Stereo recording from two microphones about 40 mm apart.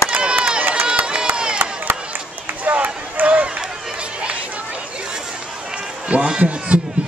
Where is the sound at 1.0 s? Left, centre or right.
Right.